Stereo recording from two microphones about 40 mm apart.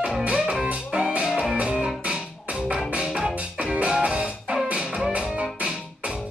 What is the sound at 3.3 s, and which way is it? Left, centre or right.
Music, right.